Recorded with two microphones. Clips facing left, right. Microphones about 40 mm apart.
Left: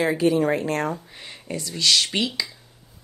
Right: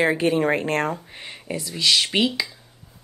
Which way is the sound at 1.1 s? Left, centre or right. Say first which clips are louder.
Right 3 dB; right.